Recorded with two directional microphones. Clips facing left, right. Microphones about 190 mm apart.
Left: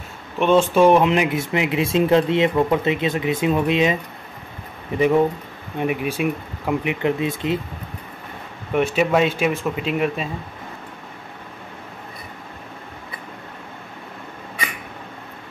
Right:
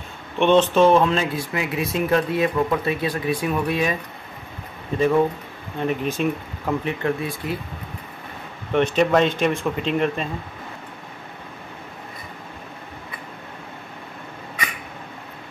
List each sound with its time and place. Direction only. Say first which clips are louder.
0.4 s speech: left 1 dB; 10° left (ahead or behind)
8.7 s speech: even; 5° left (ahead or behind)